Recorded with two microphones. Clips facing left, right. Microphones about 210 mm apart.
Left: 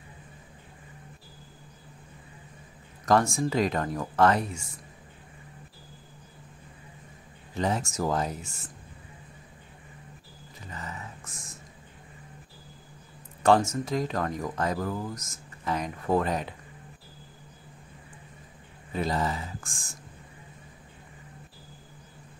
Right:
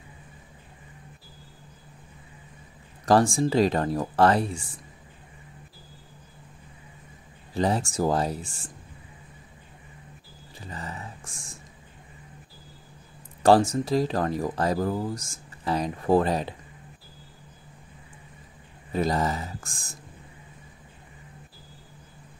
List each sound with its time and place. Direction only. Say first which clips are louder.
3.1 s speech: right 3 dB; 30° right (ahead or behind)
7.5 s speech: right 4 dB; 35° right (ahead or behind)
10.7 s a sound: right 2 dB; 30° right (ahead or behind)
13.4 s speech: right 3 dB; 35° right (ahead or behind)
18.9 s speech: right 3 dB; 40° right (ahead or behind)